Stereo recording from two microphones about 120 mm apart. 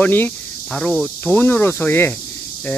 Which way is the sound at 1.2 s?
15° left (ahead or behind).